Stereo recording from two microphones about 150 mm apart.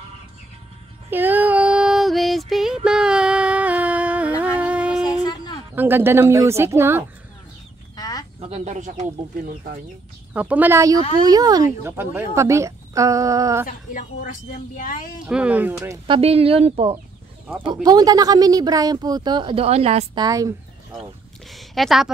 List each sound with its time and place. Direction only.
1.1 s female singing: 10° right (ahead or behind)
5.0 s a sound: 25° left (ahead or behind)
5.8 s a woman's voice: 15° right (ahead or behind)
7.9 s a sound: 25° left (ahead or behind)
8.4 s speech: 45° right (ahead or behind)
10.3 s a woman's voice: 10° right (ahead or behind)
13.7 s a woman's voice: 60° left (ahead or behind)
15.2 s a woman's voice: 5° right (ahead or behind)
16.1 s speech: 40° right (ahead or behind)
17.8 s a woman's voice: 25° right (ahead or behind); by 20.1 s 45° right (ahead or behind)
20.2 s a woman's voice: 25° right (ahead or behind)
21.5 s speech: centre (ahead or behind)